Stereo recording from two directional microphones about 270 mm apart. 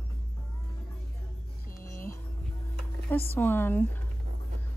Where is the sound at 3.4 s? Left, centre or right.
Centre.